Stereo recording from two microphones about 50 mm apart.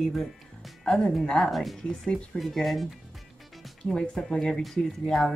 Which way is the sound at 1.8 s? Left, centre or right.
Centre.